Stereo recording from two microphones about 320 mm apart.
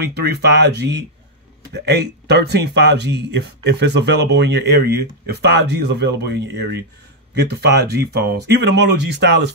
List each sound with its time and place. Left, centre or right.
0.0 s speech: right